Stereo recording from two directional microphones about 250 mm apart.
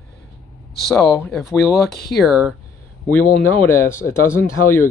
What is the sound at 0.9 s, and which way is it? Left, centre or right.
Speech, centre.